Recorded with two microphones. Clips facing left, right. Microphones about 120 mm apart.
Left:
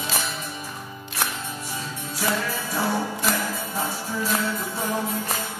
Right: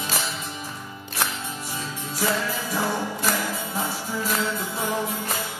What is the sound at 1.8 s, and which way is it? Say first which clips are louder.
Music: right 3 dB; 15° right (ahead or behind).